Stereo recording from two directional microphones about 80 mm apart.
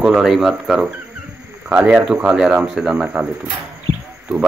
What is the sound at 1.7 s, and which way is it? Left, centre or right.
Speech, centre.